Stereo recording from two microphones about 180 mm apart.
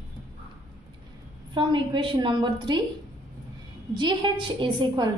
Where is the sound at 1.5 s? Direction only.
25° right (ahead or behind).